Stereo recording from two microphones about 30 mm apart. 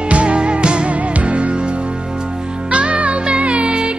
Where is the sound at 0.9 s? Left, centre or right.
Right.